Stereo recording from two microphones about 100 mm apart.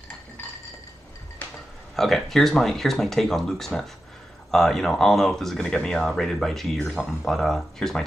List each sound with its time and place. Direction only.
2.0 s speech: centre (ahead or behind)